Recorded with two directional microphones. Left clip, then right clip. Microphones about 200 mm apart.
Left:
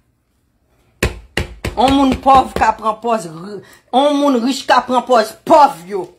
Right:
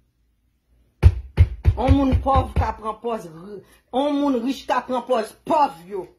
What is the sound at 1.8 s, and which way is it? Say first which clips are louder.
Speech: left 9 dB; 25° left (ahead or behind).